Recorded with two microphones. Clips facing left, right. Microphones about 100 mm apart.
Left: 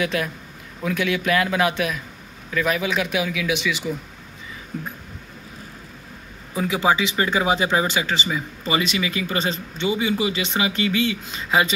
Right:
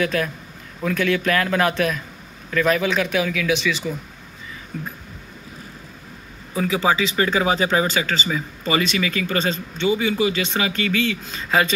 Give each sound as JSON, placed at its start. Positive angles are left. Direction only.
{"t": 0.0, "sound": "speech", "side_deg": 15}
{"t": 6.5, "sound": "speech", "side_deg": 20}